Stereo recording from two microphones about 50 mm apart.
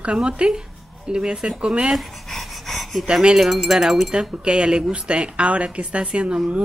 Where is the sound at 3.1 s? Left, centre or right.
Centre.